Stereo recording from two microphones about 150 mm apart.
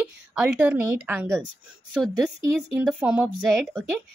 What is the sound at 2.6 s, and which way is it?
Speech, 10° right (ahead or behind).